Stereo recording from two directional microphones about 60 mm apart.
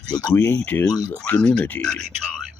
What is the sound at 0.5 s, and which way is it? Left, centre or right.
Speech, left.